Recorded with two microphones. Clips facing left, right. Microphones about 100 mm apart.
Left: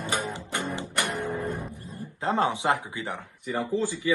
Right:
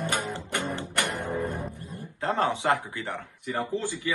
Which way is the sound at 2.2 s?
15° left (ahead or behind).